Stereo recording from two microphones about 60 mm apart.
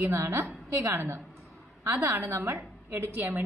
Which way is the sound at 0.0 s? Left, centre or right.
Right.